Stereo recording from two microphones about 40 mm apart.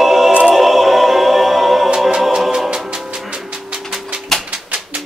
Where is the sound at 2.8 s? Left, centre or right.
Right.